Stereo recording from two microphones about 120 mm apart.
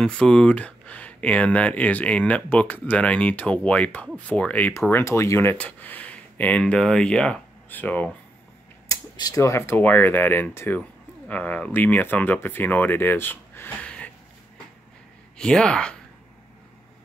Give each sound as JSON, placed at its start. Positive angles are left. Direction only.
{"t": 0.0, "sound": "speech", "side_deg": 5}
{"t": 8.8, "sound": "a sound", "side_deg": 30}
{"t": 9.8, "sound": "speech", "side_deg": 15}
{"t": 15.3, "sound": "speech", "side_deg": 5}